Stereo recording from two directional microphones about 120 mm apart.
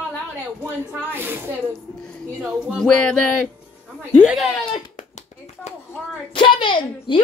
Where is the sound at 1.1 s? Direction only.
20° right (ahead or behind).